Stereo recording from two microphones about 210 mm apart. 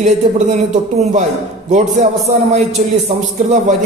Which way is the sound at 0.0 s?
35° right (ahead or behind).